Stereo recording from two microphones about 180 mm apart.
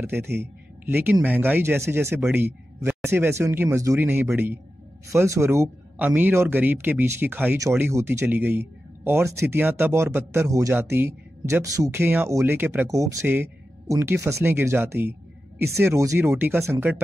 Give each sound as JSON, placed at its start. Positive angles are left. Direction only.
{"t": 0.0, "sound": "a man's voice", "side_deg": -10}